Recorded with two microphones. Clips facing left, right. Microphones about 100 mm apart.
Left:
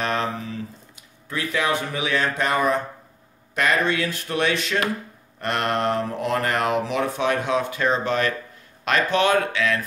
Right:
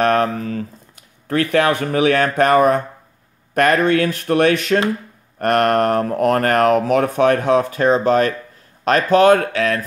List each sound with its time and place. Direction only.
0.0 s speech: 55° right (ahead or behind)